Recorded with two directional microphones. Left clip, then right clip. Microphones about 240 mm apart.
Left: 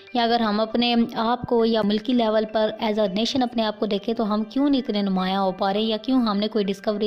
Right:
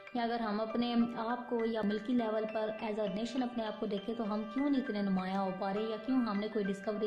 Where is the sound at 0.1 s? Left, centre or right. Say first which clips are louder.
Left 14 dB; left.